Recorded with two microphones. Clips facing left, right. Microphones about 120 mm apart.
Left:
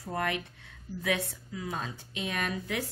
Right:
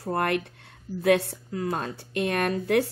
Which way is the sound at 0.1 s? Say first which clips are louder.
Right 7 dB; 60° right (ahead or behind).